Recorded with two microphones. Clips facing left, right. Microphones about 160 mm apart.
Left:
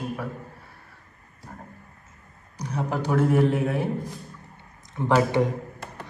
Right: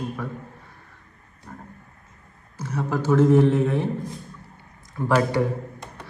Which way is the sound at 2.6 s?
15° left (ahead or behind).